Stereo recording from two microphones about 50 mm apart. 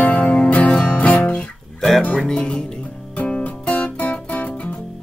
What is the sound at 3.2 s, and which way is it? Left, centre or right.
Music, left.